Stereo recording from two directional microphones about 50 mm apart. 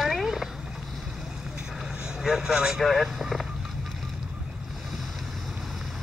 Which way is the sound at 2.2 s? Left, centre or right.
Centre.